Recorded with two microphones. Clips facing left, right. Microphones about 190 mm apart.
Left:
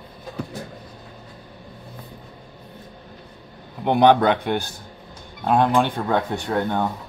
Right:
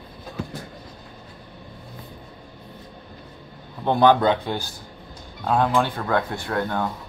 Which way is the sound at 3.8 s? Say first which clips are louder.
Left 1 dB; 15° left (ahead or behind).